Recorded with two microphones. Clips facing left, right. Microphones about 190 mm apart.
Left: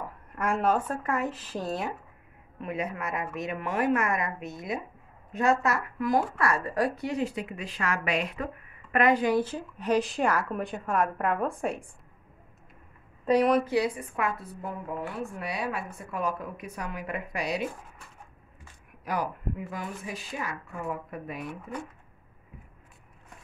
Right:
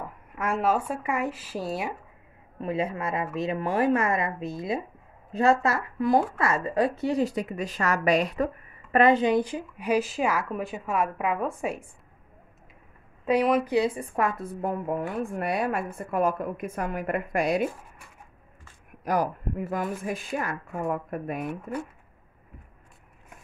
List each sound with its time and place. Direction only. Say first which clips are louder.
0.4 s speech: right 1 dB; 5° right (ahead or behind)
2.6 s a woman's voice: right 4 dB; 30° right (ahead or behind)
8.9 s a woman's voice: right 3 dB; 25° right (ahead or behind); by 11.8 s 5° right (ahead or behind)
13.2 s speech: even; 5° right (ahead or behind)
13.7 s speech: right 2 dB; 25° right (ahead or behind)
14.1 s a woman's voice: right 4 dB; 45° right (ahead or behind)
19.0 s a woman's voice: right 5 dB; 45° right (ahead or behind)